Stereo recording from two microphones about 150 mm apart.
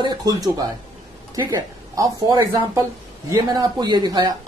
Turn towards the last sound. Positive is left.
turn(degrees=-25)  # may be behind; listen again after turning